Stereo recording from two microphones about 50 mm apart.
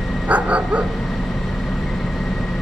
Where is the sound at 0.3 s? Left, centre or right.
Right.